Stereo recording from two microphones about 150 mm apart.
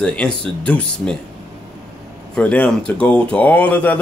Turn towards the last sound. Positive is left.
turn(degrees=10)  # may be behind; listen again after turning